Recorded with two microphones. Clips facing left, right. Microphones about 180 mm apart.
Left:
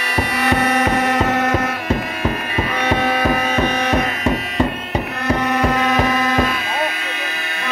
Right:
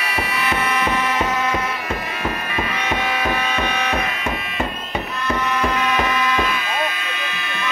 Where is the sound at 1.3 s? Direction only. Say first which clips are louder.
Left 4 dB; 65° left (ahead or behind).